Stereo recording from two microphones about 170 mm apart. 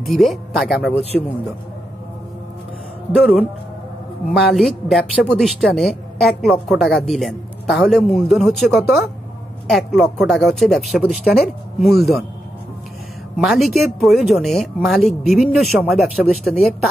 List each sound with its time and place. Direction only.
0.1 s speech: centre (ahead or behind)
3.2 s speech: centre (ahead or behind)
13.4 s speech: centre (ahead or behind)